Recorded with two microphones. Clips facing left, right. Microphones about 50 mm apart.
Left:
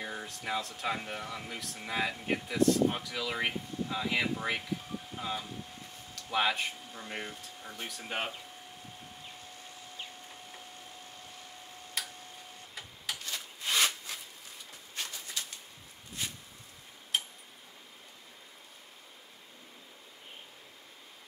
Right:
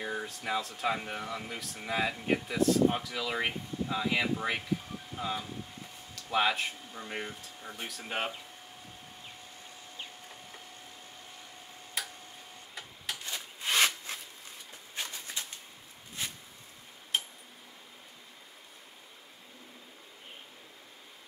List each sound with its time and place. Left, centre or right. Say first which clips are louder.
0.0 s speech: right 3 dB; centre
6.9 s speech: right 2 dB; centre
12.0 s tick-tock: right 1 dB; centre
12.7 s printer: even; centre
13.2 s rub: right 1 dB; right
17.1 s tick-tock: even; centre